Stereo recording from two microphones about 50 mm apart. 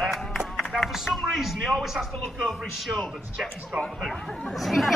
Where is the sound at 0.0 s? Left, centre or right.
Centre.